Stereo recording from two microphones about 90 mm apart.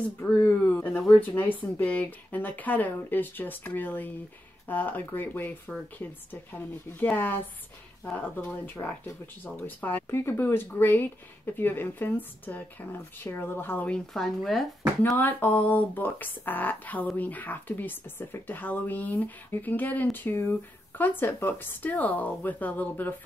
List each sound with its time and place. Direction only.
0.2 s speech: 25° left (ahead or behind)
13.9 s speech: 5° left (ahead or behind)
15.1 s speech: 20° left (ahead or behind)